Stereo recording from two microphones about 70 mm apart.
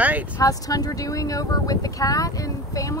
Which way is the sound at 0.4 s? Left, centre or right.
Left.